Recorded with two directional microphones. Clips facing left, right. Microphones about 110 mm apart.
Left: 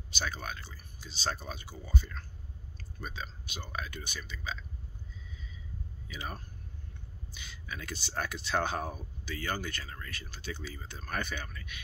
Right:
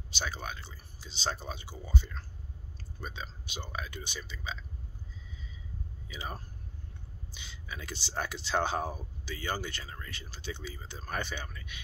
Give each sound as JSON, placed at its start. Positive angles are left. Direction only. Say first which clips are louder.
{"t": 0.1, "sound": "speech", "louder": "even", "side_deg": -25}
{"t": 6.0, "sound": "speech", "louder": "even", "side_deg": -25}